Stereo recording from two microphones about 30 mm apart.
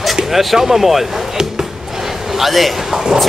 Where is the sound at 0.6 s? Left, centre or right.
Centre.